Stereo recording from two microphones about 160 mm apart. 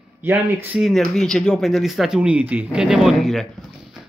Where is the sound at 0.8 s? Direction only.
Centre (ahead or behind).